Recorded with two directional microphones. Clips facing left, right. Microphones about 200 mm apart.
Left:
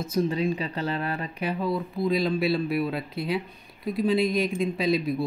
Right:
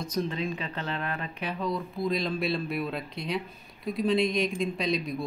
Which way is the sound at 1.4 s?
5° left (ahead or behind).